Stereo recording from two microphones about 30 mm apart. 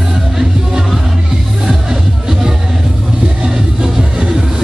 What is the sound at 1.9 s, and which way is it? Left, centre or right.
Music, right.